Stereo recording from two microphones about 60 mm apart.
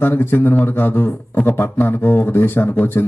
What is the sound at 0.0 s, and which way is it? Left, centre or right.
Speech, left.